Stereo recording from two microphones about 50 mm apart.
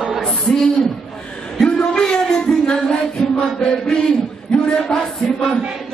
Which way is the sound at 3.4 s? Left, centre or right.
Centre.